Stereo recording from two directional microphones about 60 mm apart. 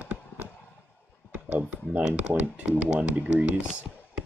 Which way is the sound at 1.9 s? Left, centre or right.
Right.